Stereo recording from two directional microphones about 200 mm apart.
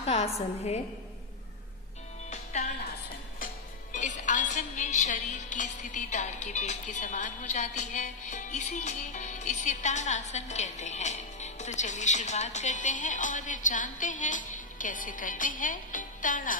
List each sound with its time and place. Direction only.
0.0 s a woman's voice: 30° left (ahead or behind)
3.9 s music: 35° left (ahead or behind)